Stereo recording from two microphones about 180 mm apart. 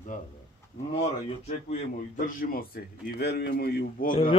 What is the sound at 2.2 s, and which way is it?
A man's voice, 50° left (ahead or behind).